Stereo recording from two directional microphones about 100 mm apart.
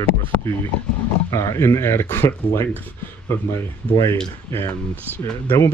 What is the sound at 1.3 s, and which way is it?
Speech, 35° left (ahead or behind).